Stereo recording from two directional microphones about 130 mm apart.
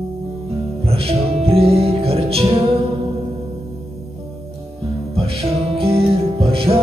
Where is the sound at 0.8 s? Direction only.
50° right (ahead or behind).